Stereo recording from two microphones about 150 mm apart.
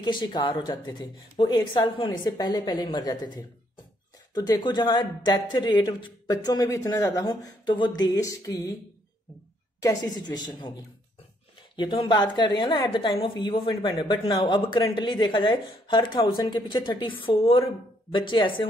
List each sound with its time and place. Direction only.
0.0 s speech: 30° left (ahead or behind)
9.8 s speech: 25° left (ahead or behind)
11.7 s a woman's voice: 30° left (ahead or behind)